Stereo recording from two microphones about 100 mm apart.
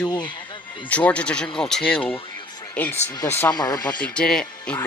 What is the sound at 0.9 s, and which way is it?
Speech, 15° left (ahead or behind).